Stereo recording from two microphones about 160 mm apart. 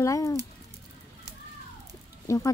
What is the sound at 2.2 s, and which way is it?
Speech, 20° left (ahead or behind).